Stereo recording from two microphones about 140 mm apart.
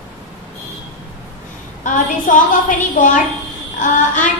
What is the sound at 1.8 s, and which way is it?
Child singing, 70° left (ahead or behind).